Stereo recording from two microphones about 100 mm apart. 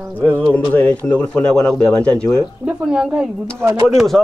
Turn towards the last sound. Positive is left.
turn(degrees=0)  # may be behind; listen again after turning